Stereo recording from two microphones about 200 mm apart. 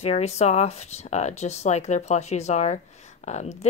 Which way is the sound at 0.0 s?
35° left (ahead or behind).